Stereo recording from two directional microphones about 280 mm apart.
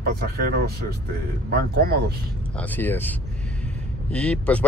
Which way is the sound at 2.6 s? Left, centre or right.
Centre.